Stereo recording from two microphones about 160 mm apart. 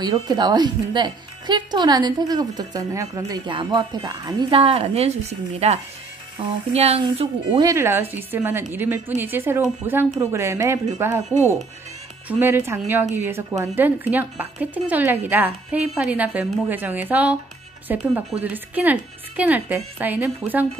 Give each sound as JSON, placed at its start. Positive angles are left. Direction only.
{"t": 0.0, "sound": "speech", "side_deg": -25}
{"t": 7.7, "sound": "speech", "side_deg": -15}
{"t": 12.3, "sound": "speech", "side_deg": -15}